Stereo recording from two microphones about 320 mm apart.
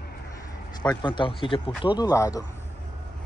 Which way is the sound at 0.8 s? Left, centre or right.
Centre.